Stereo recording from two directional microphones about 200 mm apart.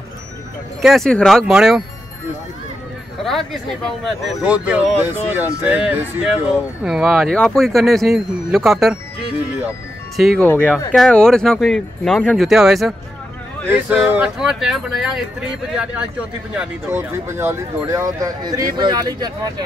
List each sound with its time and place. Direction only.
0.8 s speech: centre (ahead or behind)
3.3 s speech: centre (ahead or behind)
10.1 s speech: centre (ahead or behind); by 19.5 s 20° right (ahead or behind)